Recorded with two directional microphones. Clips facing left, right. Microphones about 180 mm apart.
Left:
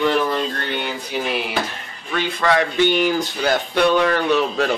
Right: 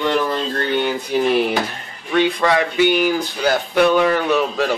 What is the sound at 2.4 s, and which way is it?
Speech, 10° right (ahead or behind).